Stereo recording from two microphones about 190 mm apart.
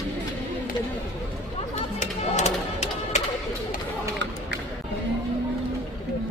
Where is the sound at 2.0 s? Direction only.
35° left (ahead or behind).